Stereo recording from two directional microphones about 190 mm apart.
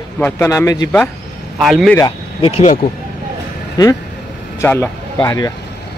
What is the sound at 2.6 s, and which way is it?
Speech, 40° left (ahead or behind).